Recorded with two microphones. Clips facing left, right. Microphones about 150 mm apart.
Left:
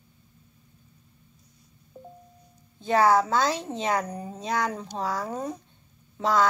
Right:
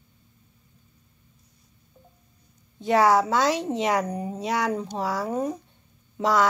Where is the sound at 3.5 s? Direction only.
15° right (ahead or behind).